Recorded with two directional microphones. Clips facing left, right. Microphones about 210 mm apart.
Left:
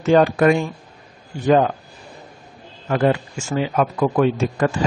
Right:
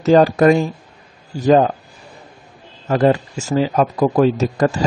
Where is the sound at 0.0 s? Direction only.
40° right (ahead or behind).